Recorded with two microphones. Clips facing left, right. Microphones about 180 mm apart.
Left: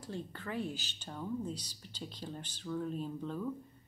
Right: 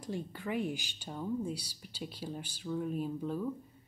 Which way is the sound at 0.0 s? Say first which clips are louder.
Right 4 dB; 15° right (ahead or behind).